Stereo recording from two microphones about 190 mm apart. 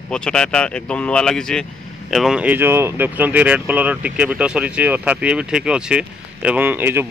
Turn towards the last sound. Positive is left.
turn(degrees=-10)  # may be behind; listen again after turning